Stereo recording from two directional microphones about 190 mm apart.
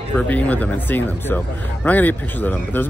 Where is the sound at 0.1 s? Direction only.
10° left (ahead or behind).